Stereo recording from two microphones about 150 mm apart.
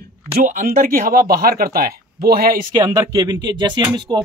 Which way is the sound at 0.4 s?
70° right (ahead or behind).